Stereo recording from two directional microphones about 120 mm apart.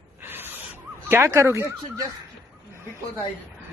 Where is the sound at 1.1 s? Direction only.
25° right (ahead or behind).